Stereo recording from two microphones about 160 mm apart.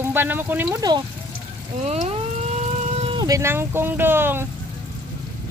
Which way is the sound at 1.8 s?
45° right (ahead or behind).